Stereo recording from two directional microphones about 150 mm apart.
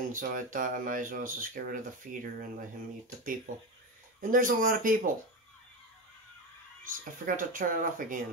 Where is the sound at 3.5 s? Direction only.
65° right (ahead or behind).